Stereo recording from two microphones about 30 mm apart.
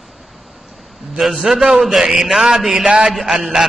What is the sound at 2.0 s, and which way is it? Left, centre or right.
Speech, right.